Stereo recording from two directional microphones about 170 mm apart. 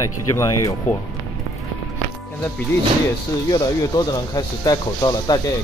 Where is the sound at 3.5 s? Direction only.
25° left (ahead or behind).